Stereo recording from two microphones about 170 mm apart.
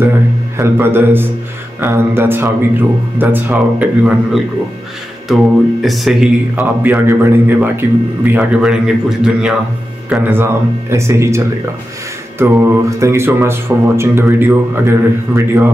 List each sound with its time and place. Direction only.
0.6 s speech: 15° right (ahead or behind)
5.3 s speech: centre (ahead or behind)
6.5 s speech: 15° right (ahead or behind)